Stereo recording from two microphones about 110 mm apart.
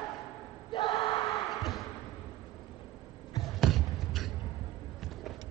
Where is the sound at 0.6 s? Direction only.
45° left (ahead or behind).